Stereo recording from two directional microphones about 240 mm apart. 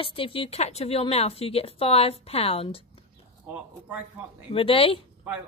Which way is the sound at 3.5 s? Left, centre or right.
Centre.